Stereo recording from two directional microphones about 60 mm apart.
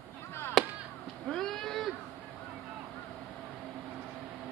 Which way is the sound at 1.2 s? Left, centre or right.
Centre.